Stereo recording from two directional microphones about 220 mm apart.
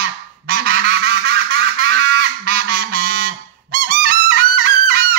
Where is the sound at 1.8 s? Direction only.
45° right (ahead or behind).